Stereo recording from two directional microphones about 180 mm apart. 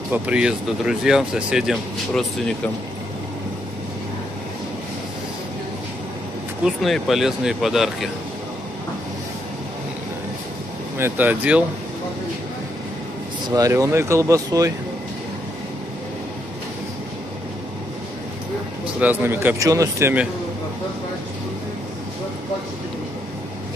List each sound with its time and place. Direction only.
0.1 s speech: 5° right (ahead or behind)
6.6 s speech: centre (ahead or behind)
11.0 s speech: 10° right (ahead or behind)
13.5 s speech: 20° right (ahead or behind)
18.9 s speech: 10° right (ahead or behind)